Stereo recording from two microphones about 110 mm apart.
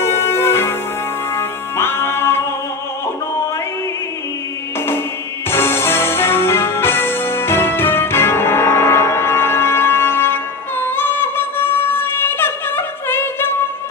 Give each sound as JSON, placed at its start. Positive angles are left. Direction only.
{"t": 0.0, "sound": "music", "side_deg": 20}
{"t": 5.5, "sound": "music", "side_deg": 20}